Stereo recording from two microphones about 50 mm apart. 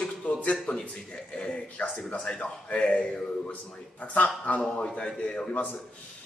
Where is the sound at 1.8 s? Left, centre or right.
Left.